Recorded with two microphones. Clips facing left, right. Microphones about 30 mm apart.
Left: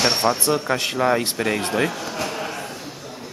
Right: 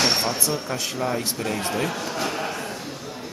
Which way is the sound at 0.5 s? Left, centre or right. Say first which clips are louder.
Left 6 dB; left.